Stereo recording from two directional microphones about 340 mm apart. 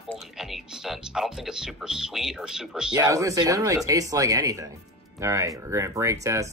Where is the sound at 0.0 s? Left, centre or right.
Centre.